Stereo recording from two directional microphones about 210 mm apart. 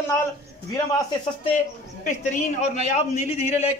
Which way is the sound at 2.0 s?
35° left (ahead or behind).